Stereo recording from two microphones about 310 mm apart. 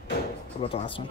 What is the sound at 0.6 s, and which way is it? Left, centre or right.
Speech, centre.